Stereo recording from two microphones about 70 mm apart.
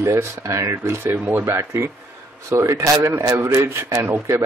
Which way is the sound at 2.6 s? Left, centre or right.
Right.